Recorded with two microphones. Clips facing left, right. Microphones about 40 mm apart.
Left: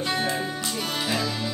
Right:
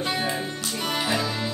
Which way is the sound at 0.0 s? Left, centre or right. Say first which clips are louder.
Left 1 dB; centre.